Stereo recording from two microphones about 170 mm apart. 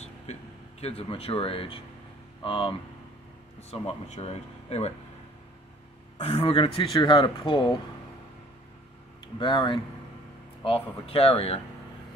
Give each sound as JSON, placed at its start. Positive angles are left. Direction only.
{"t": 0.0, "sound": "speech", "side_deg": 40}
{"t": 3.7, "sound": "speech", "side_deg": 40}
{"t": 6.1, "sound": "speech", "side_deg": 35}
{"t": 9.4, "sound": "speech", "side_deg": 30}